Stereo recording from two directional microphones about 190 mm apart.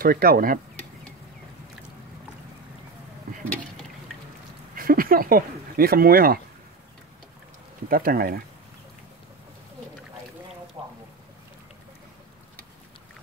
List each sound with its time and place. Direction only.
0.0 s speech: 50° right (ahead or behind)
4.7 s speech: 50° right (ahead or behind)
7.9 s speech: 50° right (ahead or behind)
10.8 s a sound: centre (ahead or behind)